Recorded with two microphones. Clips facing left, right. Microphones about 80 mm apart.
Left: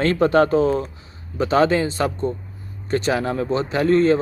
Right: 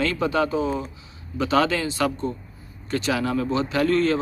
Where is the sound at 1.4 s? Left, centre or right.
Left.